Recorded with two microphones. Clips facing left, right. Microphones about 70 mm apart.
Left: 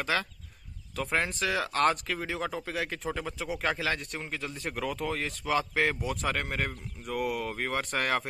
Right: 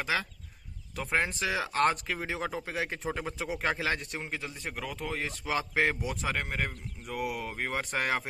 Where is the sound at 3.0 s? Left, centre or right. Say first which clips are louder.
Even; right.